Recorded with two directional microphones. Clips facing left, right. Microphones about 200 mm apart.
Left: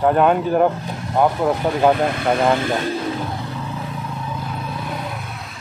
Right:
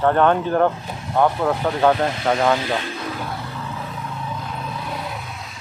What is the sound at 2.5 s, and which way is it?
Speech, 45° left (ahead or behind).